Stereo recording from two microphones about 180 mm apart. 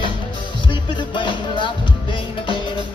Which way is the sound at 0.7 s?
25° left (ahead or behind).